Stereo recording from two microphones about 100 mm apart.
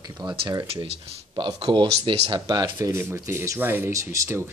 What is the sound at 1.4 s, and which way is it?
Speech, 45° right (ahead or behind).